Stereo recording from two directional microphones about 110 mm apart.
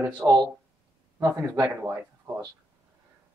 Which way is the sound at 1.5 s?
20° right (ahead or behind).